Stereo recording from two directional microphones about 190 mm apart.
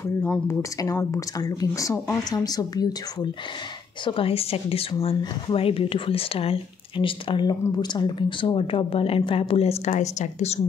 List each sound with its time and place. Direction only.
0.0 s speech: 10° left (ahead or behind)
4.0 s speech: 30° left (ahead or behind)